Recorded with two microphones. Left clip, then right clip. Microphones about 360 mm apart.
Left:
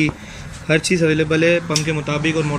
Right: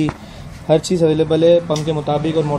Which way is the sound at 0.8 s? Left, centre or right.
Centre.